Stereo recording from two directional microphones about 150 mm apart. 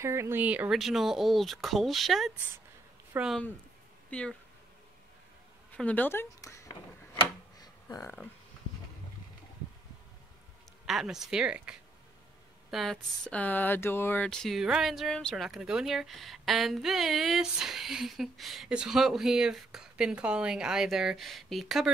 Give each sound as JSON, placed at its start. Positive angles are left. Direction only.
{"t": 0.0, "sound": "speech", "side_deg": -20}
{"t": 5.7, "sound": "speech", "side_deg": 10}
{"t": 7.6, "sound": "a sound", "side_deg": 25}
{"t": 10.9, "sound": "speech", "side_deg": 0}
{"t": 12.7, "sound": "speech", "side_deg": 0}